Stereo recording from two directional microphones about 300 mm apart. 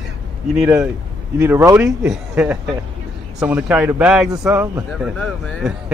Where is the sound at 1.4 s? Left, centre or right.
Centre.